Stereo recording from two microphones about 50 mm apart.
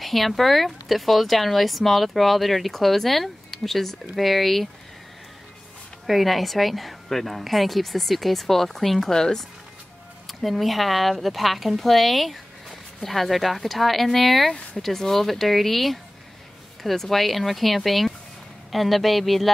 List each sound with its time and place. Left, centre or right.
0.0 s speech: centre
6.0 s speech: centre